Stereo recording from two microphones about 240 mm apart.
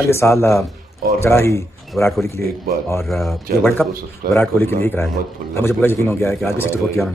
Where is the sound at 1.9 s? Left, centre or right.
Centre.